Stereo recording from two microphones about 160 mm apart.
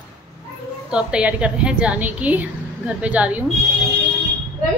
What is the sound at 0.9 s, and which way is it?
A woman's voice, 5° right (ahead or behind).